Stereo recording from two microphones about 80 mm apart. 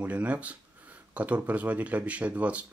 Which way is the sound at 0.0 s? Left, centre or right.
Centre.